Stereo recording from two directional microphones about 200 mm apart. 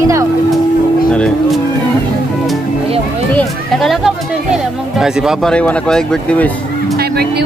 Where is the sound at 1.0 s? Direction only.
5° left (ahead or behind).